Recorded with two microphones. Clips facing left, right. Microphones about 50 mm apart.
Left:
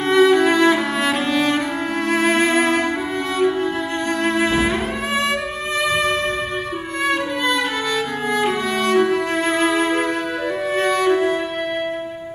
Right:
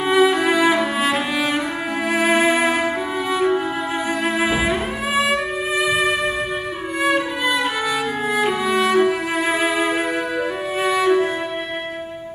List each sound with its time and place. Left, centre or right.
0.0 s music: centre
4.2 s music: centre